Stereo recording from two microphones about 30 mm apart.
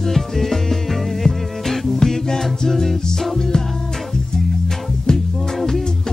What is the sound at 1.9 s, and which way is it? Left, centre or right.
Music, centre.